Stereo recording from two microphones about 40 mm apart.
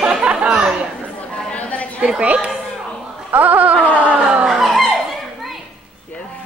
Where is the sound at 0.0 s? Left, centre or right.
Right.